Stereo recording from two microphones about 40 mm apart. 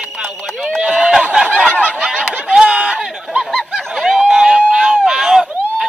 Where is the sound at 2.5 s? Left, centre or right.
Right.